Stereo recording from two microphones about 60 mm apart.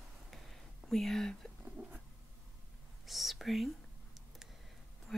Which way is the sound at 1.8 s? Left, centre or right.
Right.